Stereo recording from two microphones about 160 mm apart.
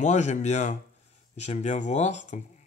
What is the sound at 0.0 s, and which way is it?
Speech, 45° left (ahead or behind).